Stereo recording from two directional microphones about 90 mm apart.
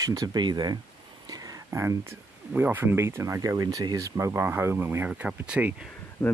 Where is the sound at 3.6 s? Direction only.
50° right (ahead or behind).